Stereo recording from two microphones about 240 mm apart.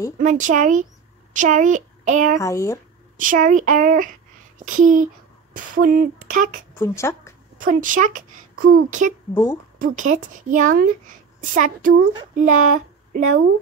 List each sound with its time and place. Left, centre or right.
0.2 s a woman's voice: right
2.3 s speech: centre
3.2 s a woman's voice: right
5.8 s a woman's voice: right
6.7 s a woman's voice: centre
7.6 s a woman's voice: right
9.3 s speech: centre
9.8 s a woman's voice: right